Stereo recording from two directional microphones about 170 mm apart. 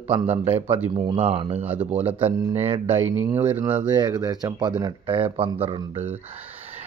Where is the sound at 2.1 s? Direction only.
35° right (ahead or behind).